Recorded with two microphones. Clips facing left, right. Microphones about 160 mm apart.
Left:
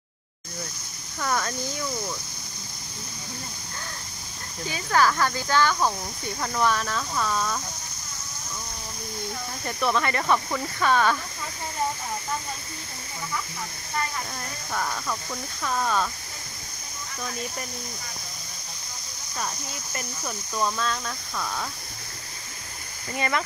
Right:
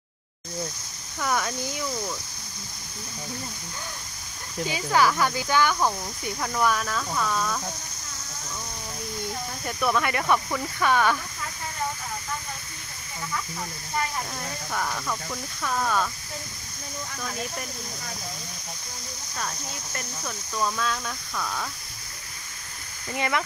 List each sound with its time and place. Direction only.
1.2 s speech: 5° right (ahead or behind)
4.6 s speech: 15° right (ahead or behind); by 7.6 s 5° left (ahead or behind)
9.7 s speech: 5° right (ahead or behind)
14.7 s speech: centre (ahead or behind)
19.3 s speech: 10° left (ahead or behind)
23.1 s speech: 15° right (ahead or behind)